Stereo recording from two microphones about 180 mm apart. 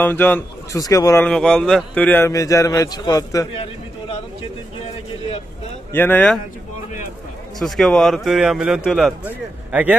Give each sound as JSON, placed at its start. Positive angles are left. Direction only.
{"t": 0.0, "sound": "a man's voice", "side_deg": 10}
{"t": 1.2, "sound": "a man's voice", "side_deg": 5}
{"t": 5.9, "sound": "a man's voice", "side_deg": 10}
{"t": 7.5, "sound": "a man's voice", "side_deg": 0}